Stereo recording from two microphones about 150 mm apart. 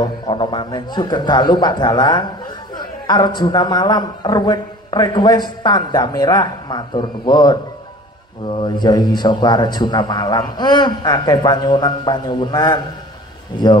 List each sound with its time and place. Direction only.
0.0 s a man's voice: 30° left (ahead or behind)